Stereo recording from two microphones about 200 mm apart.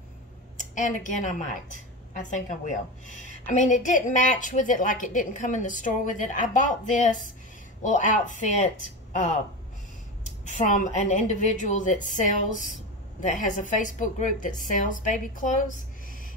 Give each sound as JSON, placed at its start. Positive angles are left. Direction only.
{"t": 0.6, "sound": "a woman's voice", "side_deg": 40}